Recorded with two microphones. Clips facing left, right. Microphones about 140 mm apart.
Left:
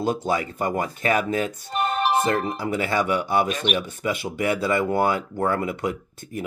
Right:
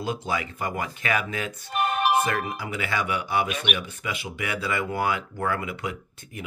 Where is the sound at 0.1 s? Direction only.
40° left (ahead or behind).